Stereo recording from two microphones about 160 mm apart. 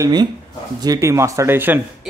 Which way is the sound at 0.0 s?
25° right (ahead or behind).